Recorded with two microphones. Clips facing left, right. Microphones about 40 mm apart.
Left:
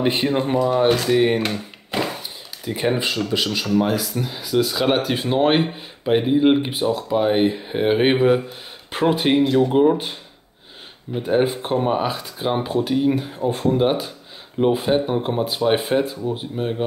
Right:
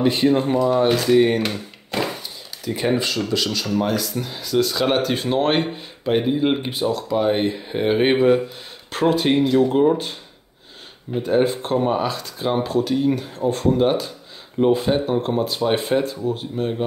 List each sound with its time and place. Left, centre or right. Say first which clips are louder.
0.0 s speech: right 2 dB; centre
2.6 s speech: even; centre
3.6 s speech: left 2 dB; centre
8.9 s speech: even; centre
9.7 s speech: left 1 dB; centre
11.1 s speech: right 1 dB; centre